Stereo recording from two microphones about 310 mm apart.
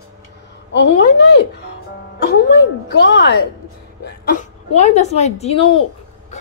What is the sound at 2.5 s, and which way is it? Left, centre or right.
Speech, left.